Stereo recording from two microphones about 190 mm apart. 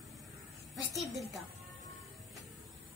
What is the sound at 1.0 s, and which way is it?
Speech, centre (ahead or behind).